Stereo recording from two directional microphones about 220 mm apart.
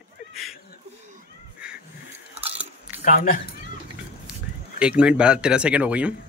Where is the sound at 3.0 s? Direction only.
40° left (ahead or behind).